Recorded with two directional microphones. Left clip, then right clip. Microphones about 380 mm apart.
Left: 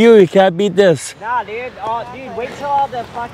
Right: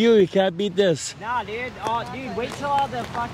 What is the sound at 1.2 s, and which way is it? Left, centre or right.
Speech, centre.